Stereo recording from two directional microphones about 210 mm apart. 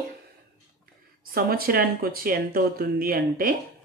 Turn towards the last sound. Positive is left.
turn(degrees=-45)  # may be behind; listen again after turning